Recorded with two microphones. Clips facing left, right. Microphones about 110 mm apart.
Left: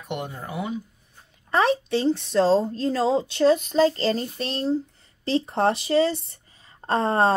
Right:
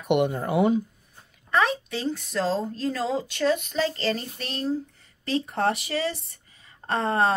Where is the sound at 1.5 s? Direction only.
30° left (ahead or behind).